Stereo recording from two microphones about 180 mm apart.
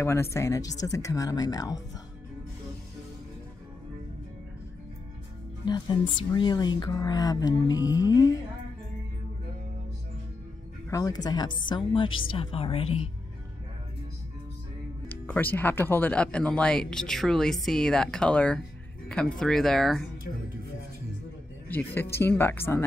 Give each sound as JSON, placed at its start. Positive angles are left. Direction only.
{"t": 0.0, "sound": "speech", "side_deg": 15}
{"t": 5.7, "sound": "speech", "side_deg": 25}
{"t": 10.9, "sound": "speech", "side_deg": 20}
{"t": 15.0, "sound": "speech", "side_deg": 10}
{"t": 21.6, "sound": "speech", "side_deg": 10}